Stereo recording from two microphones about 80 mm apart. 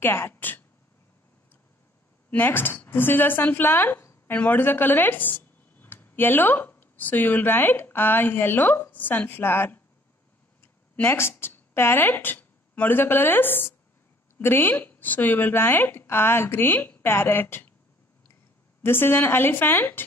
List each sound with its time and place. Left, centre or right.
0.0 s speech: left
2.3 s speech: left
11.0 s speech: left
18.8 s speech: left